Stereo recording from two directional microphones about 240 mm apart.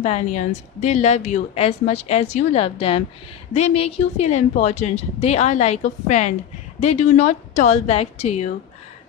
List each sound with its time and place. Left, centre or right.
0.0 s a woman's voice: left